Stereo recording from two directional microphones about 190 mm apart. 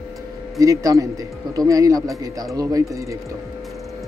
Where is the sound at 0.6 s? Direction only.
15° right (ahead or behind).